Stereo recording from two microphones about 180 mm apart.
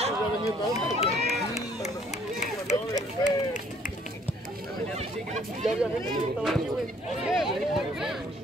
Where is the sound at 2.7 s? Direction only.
40° left (ahead or behind).